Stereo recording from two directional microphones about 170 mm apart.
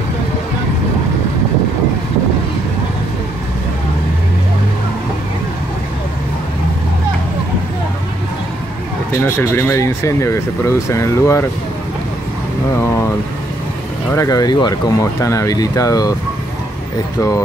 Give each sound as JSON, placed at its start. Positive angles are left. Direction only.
{"t": 9.2, "sound": "speech", "side_deg": 15}
{"t": 14.1, "sound": "speech", "side_deg": 20}